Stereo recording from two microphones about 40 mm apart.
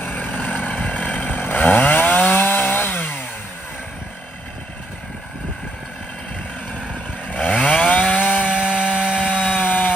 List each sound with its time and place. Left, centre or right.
0.0 s vehicle: left
1.4 s chainsaw: left
7.2 s chainsaw: left
8.5 s chainsaw: right
9.2 s sawing: left